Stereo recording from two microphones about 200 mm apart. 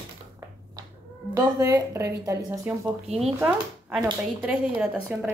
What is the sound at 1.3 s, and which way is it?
Speech, 15° right (ahead or behind).